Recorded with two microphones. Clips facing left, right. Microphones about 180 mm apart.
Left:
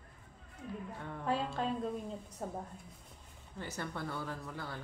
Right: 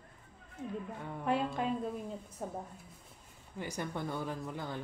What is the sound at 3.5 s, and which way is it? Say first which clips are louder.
Speech: right 3 dB; 15° right (ahead or behind).